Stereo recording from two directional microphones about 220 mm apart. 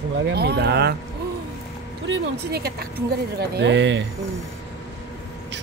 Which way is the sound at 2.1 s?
45° right (ahead or behind).